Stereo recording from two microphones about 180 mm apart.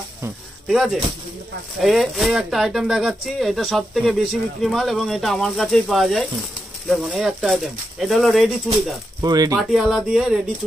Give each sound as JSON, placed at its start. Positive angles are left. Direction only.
{"t": 0.7, "sound": "speech", "side_deg": 0}
{"t": 9.2, "sound": "speech", "side_deg": -20}
{"t": 9.6, "sound": "speech", "side_deg": 0}